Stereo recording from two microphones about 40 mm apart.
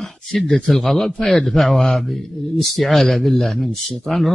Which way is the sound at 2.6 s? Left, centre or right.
Centre.